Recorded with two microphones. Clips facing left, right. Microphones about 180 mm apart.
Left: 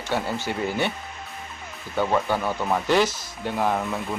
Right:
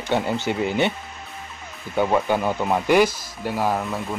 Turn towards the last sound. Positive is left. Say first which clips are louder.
# right 1 dB
turn(degrees=0)  # may be behind; listen again after turning